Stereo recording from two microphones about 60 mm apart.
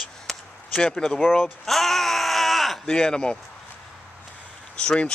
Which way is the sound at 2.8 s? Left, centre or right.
Centre.